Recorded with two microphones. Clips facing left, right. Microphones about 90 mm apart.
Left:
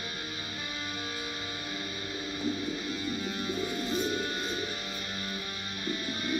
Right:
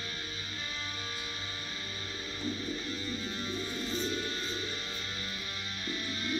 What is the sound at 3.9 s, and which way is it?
Music, 15° left (ahead or behind).